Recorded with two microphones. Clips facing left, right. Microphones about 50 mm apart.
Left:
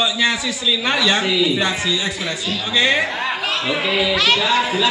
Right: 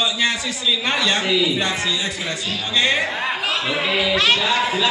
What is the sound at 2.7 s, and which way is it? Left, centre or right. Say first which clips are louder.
Speech: left 2 dB; centre.